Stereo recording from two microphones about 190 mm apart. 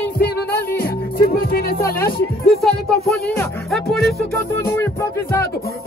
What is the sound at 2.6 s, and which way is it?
Speech, centre (ahead or behind).